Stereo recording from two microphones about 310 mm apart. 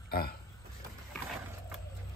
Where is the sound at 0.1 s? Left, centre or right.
Left.